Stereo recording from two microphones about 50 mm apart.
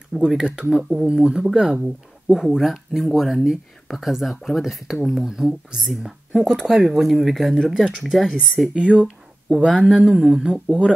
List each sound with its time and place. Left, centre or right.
0.1 s speech: centre
2.3 s speech: centre
8.7 s speech: right
10.4 s speech: right